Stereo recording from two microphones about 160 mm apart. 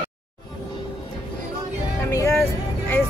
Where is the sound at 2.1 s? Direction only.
20° left (ahead or behind).